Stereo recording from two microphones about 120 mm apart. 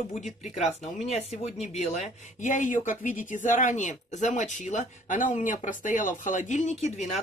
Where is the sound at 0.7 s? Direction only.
60° left (ahead or behind).